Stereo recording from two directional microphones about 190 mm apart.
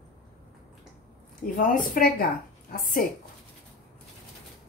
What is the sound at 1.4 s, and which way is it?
A woman's voice, 50° left (ahead or behind).